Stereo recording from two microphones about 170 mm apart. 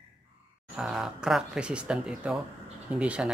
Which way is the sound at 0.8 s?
5° right (ahead or behind).